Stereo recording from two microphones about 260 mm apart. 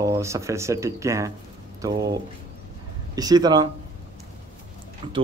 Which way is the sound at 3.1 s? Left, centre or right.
Centre.